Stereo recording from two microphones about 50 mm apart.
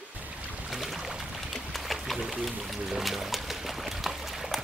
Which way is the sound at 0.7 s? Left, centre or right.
Centre.